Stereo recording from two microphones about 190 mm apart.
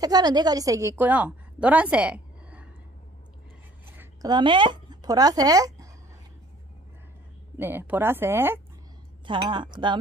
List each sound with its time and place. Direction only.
0.0 s a woman's voice: 20° right (ahead or behind)
3.9 s a sound: 10° right (ahead or behind)
4.3 s speech: 25° right (ahead or behind)
7.5 s speech: 10° right (ahead or behind)
9.2 s speech: 25° right (ahead or behind)